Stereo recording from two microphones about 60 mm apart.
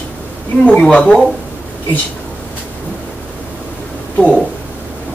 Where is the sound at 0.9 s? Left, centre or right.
Centre.